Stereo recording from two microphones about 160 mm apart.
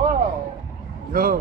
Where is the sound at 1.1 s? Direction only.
65° right (ahead or behind).